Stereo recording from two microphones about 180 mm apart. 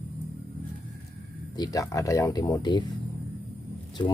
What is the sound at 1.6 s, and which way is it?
Speech, 20° left (ahead or behind).